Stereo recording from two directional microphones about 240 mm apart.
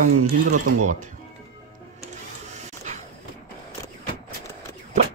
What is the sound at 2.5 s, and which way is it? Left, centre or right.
Dog, right.